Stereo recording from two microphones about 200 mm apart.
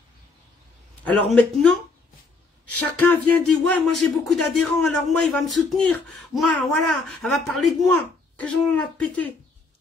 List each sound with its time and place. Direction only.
1.0 s speech: 5° left (ahead or behind)
3.0 s speech: centre (ahead or behind)